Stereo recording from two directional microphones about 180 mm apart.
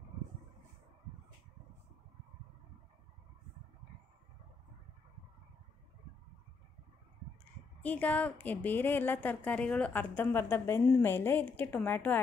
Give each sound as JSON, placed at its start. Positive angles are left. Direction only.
{"t": 7.8, "sound": "a woman's voice", "side_deg": 10}